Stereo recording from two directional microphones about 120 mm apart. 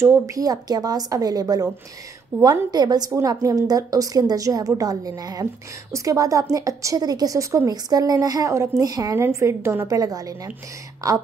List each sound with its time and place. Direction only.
0.0 s a woman's voice: 25° right (ahead or behind)